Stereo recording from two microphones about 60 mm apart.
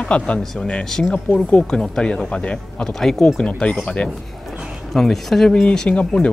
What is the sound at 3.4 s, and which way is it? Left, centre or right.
Speech, centre.